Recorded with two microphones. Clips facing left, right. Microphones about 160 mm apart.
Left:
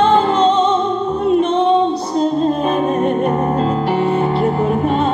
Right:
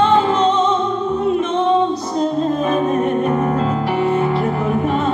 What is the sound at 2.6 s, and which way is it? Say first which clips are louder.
Music: left 1 dB; 30° left (ahead or behind).